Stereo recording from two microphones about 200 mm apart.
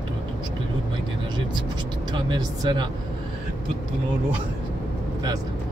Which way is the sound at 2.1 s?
25° right (ahead or behind).